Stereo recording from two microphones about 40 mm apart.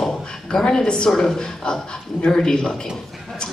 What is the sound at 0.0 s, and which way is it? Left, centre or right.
A woman's voice, centre.